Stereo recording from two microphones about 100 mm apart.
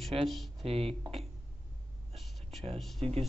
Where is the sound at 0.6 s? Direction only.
75° right (ahead or behind).